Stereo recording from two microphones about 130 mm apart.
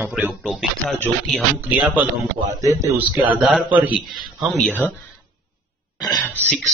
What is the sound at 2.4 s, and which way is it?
Speech, 25° right (ahead or behind).